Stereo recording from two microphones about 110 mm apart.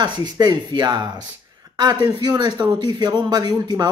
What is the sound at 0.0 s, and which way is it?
Speech, 40° right (ahead or behind).